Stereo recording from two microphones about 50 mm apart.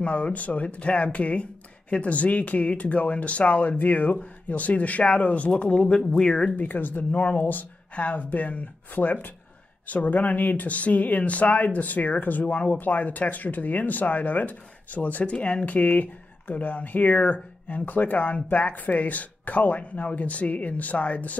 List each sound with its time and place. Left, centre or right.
0.0 s speech: left
6.5 s speech: left